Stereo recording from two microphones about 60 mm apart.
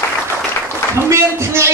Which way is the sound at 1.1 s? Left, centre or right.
Right.